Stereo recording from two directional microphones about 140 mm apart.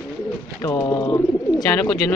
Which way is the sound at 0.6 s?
20° left (ahead or behind).